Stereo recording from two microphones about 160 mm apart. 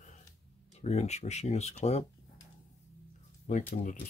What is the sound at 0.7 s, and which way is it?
Speech, 45° left (ahead or behind).